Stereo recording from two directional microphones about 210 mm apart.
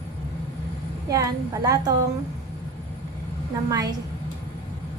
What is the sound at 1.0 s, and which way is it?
Speech, 15° right (ahead or behind).